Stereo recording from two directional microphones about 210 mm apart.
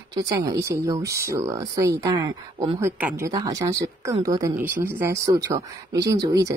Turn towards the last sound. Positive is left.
turn(degrees=-15)  # may be behind; listen again after turning